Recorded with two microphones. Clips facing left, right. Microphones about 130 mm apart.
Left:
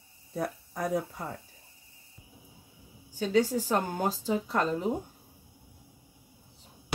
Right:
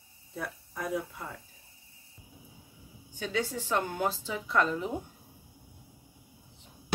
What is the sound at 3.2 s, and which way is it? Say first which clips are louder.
A woman's voice: left 7 dB; 40° left (ahead or behind).